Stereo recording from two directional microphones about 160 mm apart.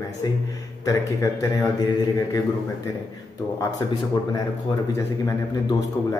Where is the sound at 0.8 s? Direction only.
20° left (ahead or behind).